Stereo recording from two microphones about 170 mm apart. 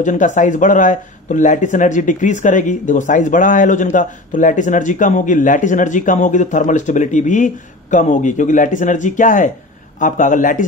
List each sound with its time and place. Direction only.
0.0 s speech: 45° left (ahead or behind)